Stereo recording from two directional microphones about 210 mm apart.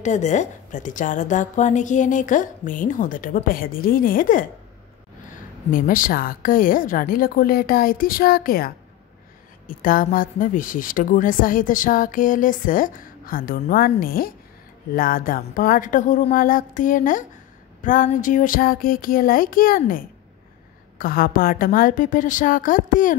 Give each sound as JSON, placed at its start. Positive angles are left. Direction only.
{"t": 0.0, "sound": "a woman's voice", "side_deg": 35}
{"t": 3.4, "sound": "child singing", "side_deg": 45}
{"t": 5.7, "sound": "a woman's voice", "side_deg": 40}
{"t": 17.8, "sound": "child singing", "side_deg": 40}
{"t": 21.0, "sound": "a woman's voice", "side_deg": 45}